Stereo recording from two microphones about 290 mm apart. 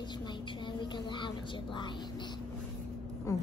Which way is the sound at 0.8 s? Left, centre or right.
Centre.